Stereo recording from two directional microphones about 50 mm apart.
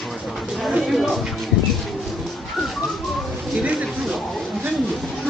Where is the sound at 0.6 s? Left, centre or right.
Centre.